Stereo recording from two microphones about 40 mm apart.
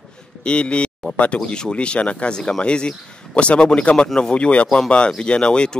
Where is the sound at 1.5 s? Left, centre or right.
Left.